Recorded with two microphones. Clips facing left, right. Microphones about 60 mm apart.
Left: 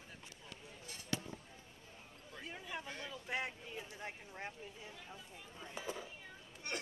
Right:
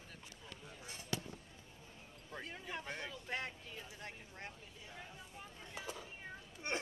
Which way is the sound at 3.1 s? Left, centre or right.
Centre.